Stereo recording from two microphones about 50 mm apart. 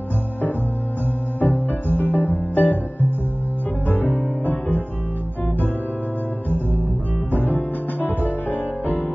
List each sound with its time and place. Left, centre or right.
1.4 s music: left
6.5 s music: left